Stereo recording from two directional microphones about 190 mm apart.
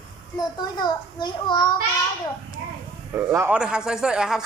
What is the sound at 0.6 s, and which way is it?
A child's voice, 25° left (ahead or behind).